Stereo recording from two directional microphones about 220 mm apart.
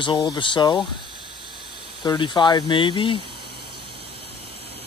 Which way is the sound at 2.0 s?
20° left (ahead or behind).